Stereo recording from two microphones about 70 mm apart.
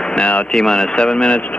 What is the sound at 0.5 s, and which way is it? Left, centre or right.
Speech, centre.